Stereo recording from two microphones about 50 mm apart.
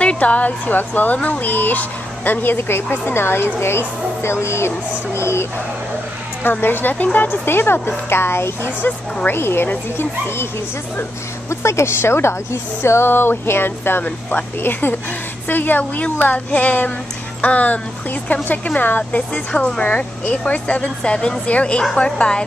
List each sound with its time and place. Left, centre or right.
0.0 s a woman's voice: left
6.4 s a sound: left
9.9 s speech: left
11.6 s speech: left
12.8 s a sound: left
14.0 s a woman's voice: left; by 22.4 s centre